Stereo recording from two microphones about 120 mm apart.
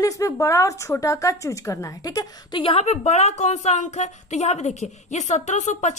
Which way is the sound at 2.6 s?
55° left (ahead or behind).